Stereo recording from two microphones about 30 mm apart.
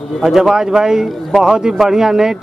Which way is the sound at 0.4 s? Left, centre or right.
Centre.